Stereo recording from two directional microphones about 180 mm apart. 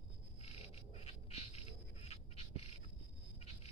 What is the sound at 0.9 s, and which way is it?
Squawk, 35° left (ahead or behind).